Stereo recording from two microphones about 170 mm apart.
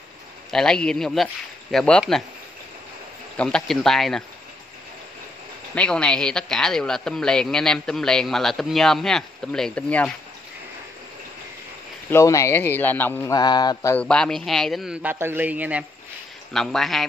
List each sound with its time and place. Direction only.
0.5 s a man's voice: 5° left (ahead or behind)
3.3 s a man's voice: 5° left (ahead or behind)
5.8 s a man's voice: 5° left (ahead or behind)
12.1 s speech: 15° left (ahead or behind)
13.3 s mantra: 25° left (ahead or behind)
13.9 s a man's voice: 5° left (ahead or behind)
16.5 s a man's voice: centre (ahead or behind)